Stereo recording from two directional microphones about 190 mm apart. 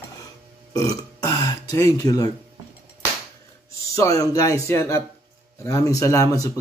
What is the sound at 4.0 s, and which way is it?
Speech, 20° left (ahead or behind).